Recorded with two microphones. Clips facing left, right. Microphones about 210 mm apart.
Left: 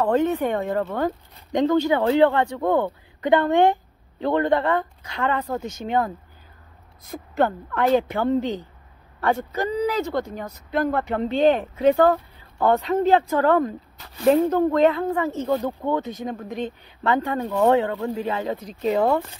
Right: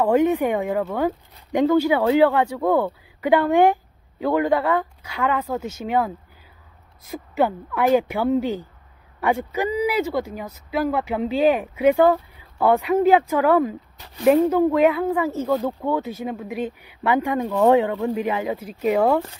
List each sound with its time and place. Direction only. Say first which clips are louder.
0.0 s speech: right 2 dB; 10° right (ahead or behind)